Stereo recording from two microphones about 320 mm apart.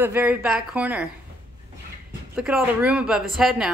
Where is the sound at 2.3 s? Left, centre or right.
Centre.